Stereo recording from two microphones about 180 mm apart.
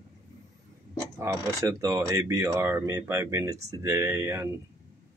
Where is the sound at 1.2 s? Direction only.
15° right (ahead or behind).